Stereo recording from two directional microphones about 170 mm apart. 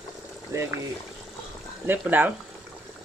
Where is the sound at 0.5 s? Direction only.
15° right (ahead or behind).